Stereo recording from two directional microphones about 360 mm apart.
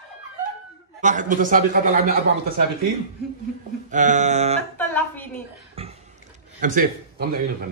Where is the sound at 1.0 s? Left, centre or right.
Right.